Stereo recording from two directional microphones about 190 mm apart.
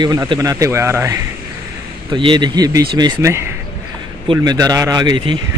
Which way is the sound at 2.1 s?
25° right (ahead or behind).